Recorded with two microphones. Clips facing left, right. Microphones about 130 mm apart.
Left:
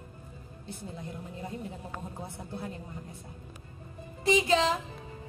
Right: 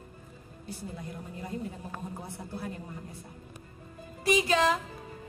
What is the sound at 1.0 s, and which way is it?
A woman's voice, 25° left (ahead or behind).